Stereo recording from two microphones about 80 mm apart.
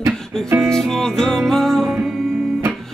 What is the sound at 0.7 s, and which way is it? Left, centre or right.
Music, centre.